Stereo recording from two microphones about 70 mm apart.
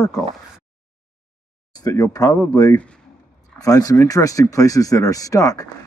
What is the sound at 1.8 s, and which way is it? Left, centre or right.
Speech, left.